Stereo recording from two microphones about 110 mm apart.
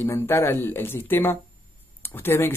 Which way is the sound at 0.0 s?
25° left (ahead or behind).